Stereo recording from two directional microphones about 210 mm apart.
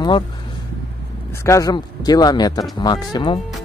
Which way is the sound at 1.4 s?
15° left (ahead or behind).